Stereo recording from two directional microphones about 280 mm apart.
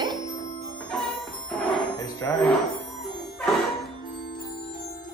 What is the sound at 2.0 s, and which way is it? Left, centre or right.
Music, centre.